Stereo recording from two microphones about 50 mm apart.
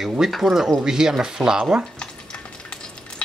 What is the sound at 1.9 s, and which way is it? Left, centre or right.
Stir, centre.